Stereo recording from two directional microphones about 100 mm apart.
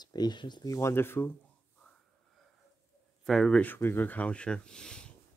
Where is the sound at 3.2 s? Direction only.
5° left (ahead or behind).